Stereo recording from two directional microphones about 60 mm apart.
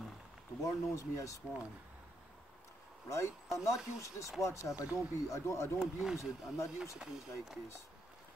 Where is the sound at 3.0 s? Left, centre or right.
Left.